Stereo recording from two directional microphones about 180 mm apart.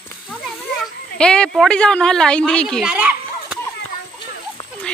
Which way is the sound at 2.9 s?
10° right (ahead or behind).